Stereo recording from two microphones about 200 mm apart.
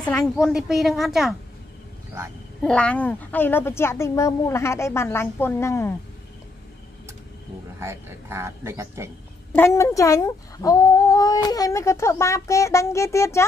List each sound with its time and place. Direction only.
0.4 s a woman's voice: centre (ahead or behind)
2.6 s speech: 5° left (ahead or behind)
7.8 s speech: 15° right (ahead or behind)
9.5 s speech: 10° left (ahead or behind)